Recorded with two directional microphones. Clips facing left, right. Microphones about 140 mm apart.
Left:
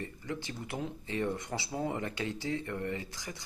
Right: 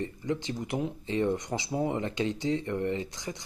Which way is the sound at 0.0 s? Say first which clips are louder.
Right 7 dB; 20° right (ahead or behind).